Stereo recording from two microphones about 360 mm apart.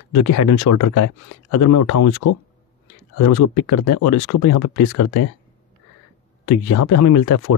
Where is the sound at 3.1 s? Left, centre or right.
Left.